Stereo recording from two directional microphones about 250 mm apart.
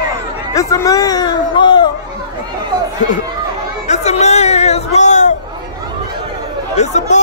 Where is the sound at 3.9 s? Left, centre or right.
Left.